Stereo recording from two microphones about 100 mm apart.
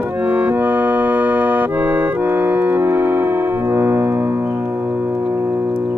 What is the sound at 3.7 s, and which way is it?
Piano, 25° right (ahead or behind).